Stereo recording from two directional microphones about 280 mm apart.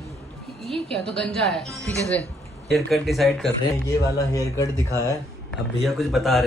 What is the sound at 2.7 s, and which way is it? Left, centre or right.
Speech, centre.